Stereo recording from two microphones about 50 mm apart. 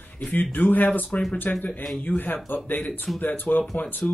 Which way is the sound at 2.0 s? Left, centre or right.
Left.